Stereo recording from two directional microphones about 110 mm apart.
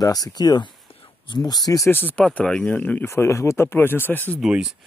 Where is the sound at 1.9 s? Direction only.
20° left (ahead or behind).